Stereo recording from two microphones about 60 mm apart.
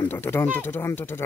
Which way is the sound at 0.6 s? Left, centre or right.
Left.